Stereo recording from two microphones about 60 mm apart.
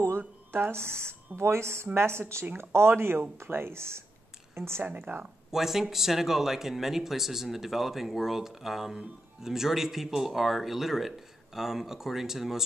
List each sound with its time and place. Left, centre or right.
0.5 s speech: right
2.4 s speech: right
4.8 s speech: right
5.5 s speech: centre